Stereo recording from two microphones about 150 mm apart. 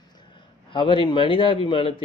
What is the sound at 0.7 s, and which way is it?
Speech, 35° left (ahead or behind).